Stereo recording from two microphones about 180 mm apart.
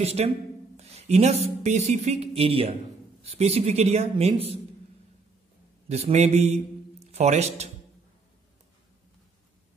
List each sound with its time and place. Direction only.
0.0 s speech: 35° right (ahead or behind)
5.9 s a man's voice: 35° right (ahead or behind)